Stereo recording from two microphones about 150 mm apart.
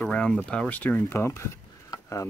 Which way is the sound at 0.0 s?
10° left (ahead or behind).